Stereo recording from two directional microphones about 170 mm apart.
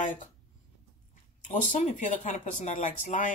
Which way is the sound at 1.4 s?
45° left (ahead or behind).